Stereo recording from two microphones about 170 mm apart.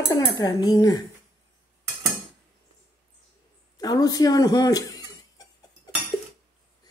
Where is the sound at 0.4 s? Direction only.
25° left (ahead or behind).